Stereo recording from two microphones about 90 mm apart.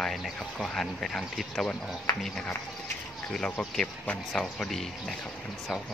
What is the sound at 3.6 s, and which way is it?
Speech, 10° left (ahead or behind).